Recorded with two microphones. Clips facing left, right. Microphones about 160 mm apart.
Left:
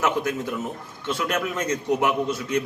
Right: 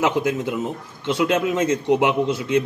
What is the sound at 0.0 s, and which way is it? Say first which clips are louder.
A man's voice: right 4 dB; 25° right (ahead or behind).